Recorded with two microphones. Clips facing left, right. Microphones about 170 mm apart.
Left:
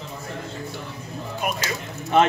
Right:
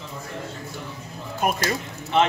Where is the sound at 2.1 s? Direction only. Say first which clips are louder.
Left 2 dB; 50° left (ahead or behind).